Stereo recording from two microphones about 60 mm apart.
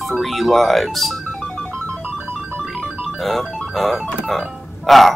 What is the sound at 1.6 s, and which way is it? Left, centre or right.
Music, centre.